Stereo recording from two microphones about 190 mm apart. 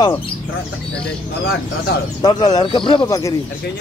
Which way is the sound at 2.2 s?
25° left (ahead or behind).